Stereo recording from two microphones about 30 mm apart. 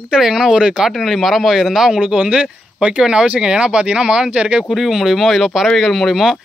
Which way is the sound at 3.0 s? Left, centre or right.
Right.